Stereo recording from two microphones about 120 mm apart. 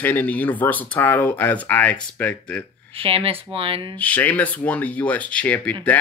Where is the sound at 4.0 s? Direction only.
15° left (ahead or behind).